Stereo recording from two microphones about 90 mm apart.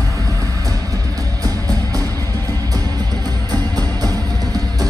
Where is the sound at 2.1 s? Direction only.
30° left (ahead or behind).